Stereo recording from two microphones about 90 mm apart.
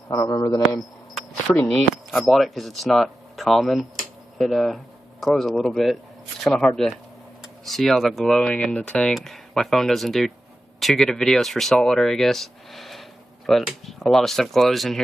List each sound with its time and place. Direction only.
0.1 s a man's voice: 35° left (ahead or behind)
1.5 s speech: 15° left (ahead or behind)
1.9 s a man's voice: centre (ahead or behind)
8.4 s speech: 10° left (ahead or behind)